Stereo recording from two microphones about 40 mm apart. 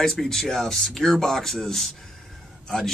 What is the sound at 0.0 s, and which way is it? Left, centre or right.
Speech, centre.